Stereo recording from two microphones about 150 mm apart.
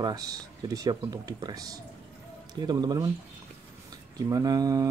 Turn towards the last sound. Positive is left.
turn(degrees=-25)  # may be behind; listen again after turning